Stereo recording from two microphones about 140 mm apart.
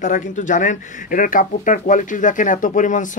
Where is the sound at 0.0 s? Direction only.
65° left (ahead or behind).